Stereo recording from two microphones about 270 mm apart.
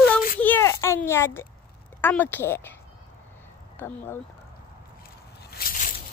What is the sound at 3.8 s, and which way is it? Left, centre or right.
Speech, centre.